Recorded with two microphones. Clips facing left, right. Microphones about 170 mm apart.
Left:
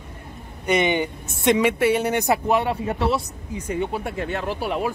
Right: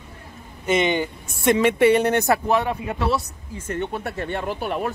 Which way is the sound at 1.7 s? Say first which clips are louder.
Right 3 dB; 5° left (ahead or behind).